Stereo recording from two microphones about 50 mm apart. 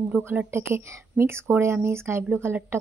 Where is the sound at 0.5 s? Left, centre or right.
Right.